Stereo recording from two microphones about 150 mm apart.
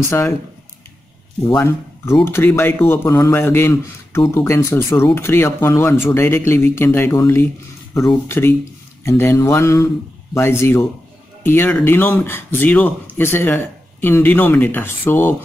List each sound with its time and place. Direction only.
1.5 s speech: 20° left (ahead or behind)